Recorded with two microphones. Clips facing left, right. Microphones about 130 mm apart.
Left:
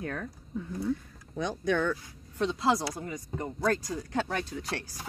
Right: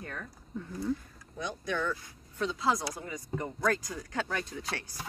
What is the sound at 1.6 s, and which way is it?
Speech, 75° left (ahead or behind).